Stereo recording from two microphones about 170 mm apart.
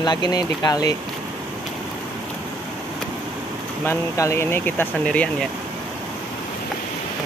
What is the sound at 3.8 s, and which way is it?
Speech, 15° left (ahead or behind).